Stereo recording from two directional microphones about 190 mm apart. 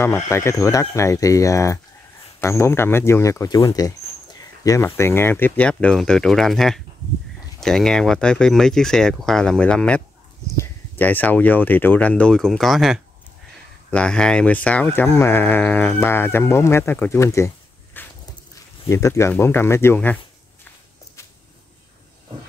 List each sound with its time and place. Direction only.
0.0 s speech: 15° left (ahead or behind)
17.9 s walk: 10° left (ahead or behind)
18.5 s speech: 15° left (ahead or behind)